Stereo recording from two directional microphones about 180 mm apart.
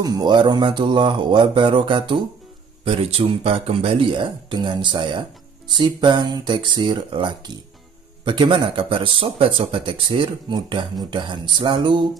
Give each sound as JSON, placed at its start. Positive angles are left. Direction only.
{"t": 0.0, "sound": "speech", "side_deg": -20}